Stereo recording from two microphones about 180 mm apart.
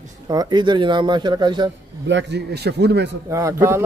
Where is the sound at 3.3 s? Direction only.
15° right (ahead or behind).